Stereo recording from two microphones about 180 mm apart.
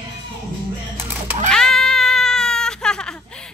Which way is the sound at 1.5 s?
5° left (ahead or behind).